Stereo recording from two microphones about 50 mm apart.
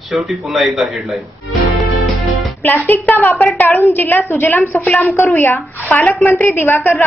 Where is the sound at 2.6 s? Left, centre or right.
Left.